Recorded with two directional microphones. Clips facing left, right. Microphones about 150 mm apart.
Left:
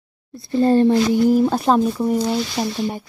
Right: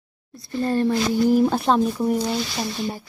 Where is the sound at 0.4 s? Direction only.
30° left (ahead or behind).